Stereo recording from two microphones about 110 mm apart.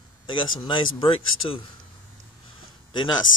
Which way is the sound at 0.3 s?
45° left (ahead or behind).